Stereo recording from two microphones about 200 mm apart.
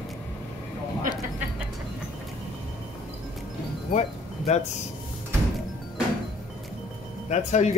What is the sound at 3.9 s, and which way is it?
Chime, 35° left (ahead or behind).